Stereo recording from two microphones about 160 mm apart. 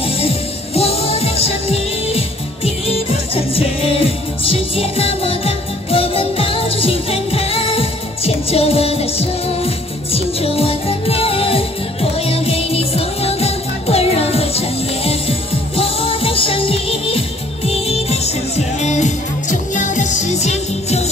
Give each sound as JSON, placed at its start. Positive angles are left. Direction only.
{"t": 0.0, "sound": "music", "side_deg": 40}